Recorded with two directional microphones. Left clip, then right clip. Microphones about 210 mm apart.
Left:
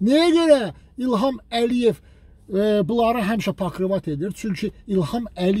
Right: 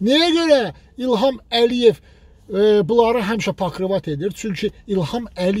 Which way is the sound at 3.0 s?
10° left (ahead or behind).